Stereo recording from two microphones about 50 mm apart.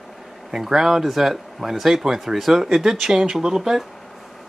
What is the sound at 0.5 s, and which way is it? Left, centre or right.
Speech, centre.